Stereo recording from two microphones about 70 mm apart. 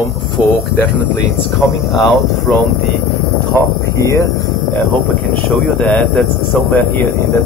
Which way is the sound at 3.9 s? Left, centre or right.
Left.